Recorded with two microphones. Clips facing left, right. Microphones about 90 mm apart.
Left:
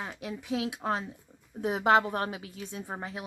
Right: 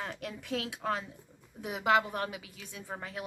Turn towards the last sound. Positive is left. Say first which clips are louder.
# left 2 dB
turn(degrees=20)  # may be behind; listen again after turning